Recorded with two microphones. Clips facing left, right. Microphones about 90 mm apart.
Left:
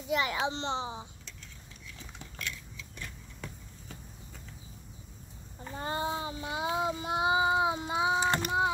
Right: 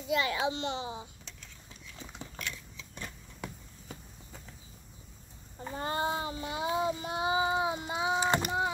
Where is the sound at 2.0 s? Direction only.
25° right (ahead or behind).